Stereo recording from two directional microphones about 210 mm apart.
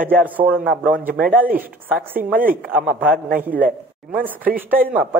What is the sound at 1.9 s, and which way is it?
A man's voice, 10° right (ahead or behind).